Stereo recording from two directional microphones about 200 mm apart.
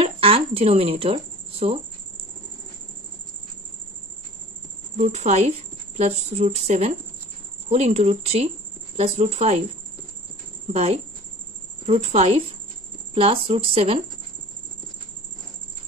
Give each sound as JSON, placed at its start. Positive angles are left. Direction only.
{"t": 0.0, "sound": "a sound", "side_deg": -30}
{"t": 4.9, "sound": "speech", "side_deg": -35}
{"t": 10.7, "sound": "speech", "side_deg": -30}